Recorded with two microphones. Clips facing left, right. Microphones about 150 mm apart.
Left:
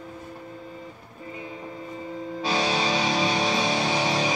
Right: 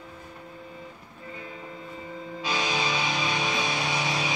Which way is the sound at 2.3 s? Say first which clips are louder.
Left 4 dB; 35° left (ahead or behind).